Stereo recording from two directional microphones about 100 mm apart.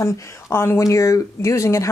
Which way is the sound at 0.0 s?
30° left (ahead or behind).